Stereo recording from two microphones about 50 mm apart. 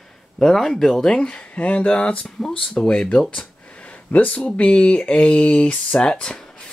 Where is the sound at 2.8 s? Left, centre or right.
Centre.